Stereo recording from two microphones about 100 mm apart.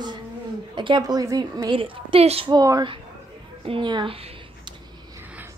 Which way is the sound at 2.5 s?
40° right (ahead or behind).